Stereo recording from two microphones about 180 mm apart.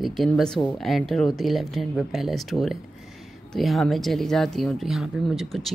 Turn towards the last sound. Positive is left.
turn(degrees=0)  # may be behind; listen again after turning